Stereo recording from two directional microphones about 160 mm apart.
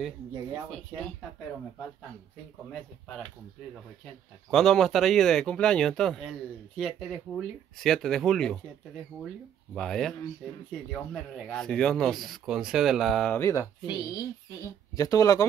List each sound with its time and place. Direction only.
4.5 s speech: 5° left (ahead or behind)
9.8 s speech: 5° left (ahead or behind)
13.4 s speech: 20° left (ahead or behind)